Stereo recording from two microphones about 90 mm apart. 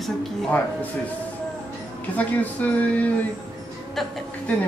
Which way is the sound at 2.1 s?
15° left (ahead or behind).